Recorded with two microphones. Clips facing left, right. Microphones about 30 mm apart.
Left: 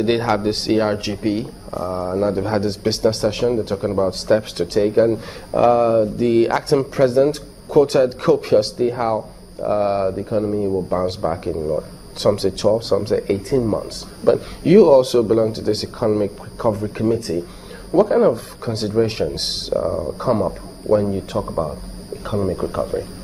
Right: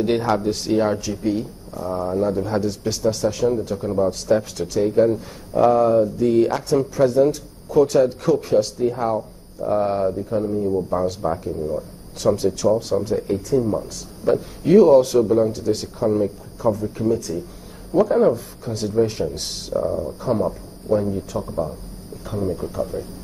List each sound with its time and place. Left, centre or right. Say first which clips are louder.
0.0 s speech: left 2 dB; left